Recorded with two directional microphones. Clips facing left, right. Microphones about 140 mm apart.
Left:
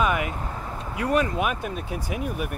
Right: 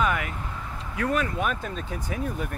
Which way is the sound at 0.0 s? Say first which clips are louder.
Left 2 dB; 20° left (ahead or behind).